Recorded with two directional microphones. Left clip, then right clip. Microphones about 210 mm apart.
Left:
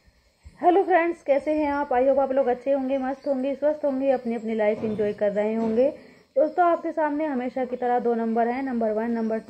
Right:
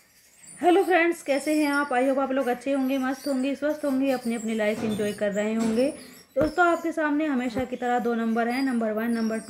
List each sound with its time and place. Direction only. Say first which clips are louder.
0.6 s a woman's voice: left 1 dB; 30° right (ahead or behind)